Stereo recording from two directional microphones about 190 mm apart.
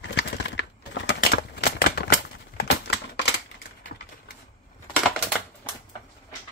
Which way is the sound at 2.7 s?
60° left (ahead or behind).